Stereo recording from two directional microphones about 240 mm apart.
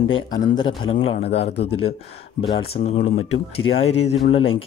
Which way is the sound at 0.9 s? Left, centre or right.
Left.